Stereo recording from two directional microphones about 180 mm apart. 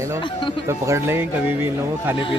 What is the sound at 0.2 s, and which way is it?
Speech, 25° left (ahead or behind).